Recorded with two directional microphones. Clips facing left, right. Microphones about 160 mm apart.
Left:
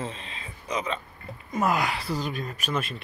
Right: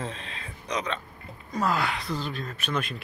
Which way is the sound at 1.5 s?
20° left (ahead or behind).